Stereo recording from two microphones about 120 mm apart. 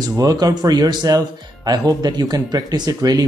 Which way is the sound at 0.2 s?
30° right (ahead or behind).